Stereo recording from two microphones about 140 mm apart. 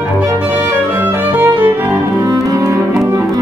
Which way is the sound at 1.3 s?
15° right (ahead or behind).